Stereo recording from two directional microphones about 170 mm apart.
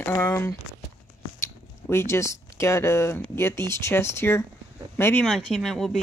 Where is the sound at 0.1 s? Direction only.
15° left (ahead or behind).